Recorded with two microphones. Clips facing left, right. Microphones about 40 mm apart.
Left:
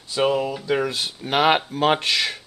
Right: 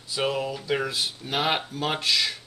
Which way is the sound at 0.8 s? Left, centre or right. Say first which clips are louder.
Left 3 dB; left.